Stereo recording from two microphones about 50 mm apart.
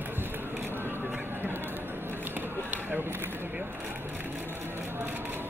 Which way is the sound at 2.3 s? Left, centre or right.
Right.